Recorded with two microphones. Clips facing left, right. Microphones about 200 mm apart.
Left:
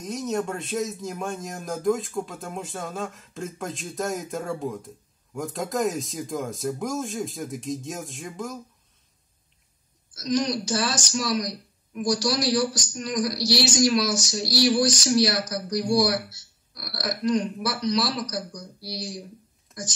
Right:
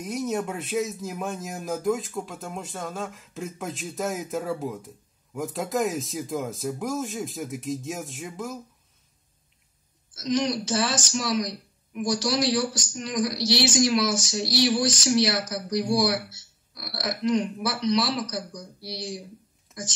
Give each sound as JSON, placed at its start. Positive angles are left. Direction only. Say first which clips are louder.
{"t": 0.0, "sound": "speech", "louder": "even", "side_deg": -5}
{"t": 10.1, "sound": "speech", "louder": "even", "side_deg": -25}